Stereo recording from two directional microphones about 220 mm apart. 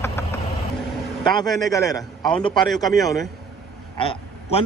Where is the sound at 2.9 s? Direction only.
Centre (ahead or behind).